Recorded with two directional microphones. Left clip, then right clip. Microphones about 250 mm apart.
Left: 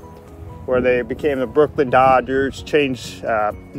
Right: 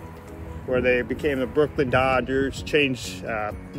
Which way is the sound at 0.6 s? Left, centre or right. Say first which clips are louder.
Left 5 dB; centre.